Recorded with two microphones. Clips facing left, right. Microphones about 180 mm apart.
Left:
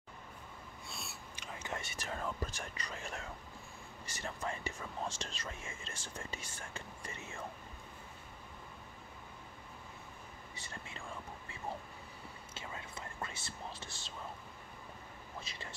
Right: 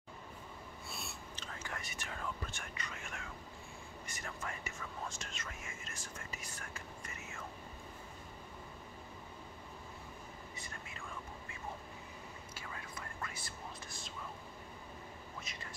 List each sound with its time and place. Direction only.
0.8 s a sound: centre (ahead or behind)
1.3 s whispering: 15° left (ahead or behind); by 3.3 s 35° left (ahead or behind)
4.1 s speech: 30° left (ahead or behind)
10.5 s whispering: 30° left (ahead or behind)
12.5 s whispering: 25° left (ahead or behind)
15.4 s whispering: 30° left (ahead or behind)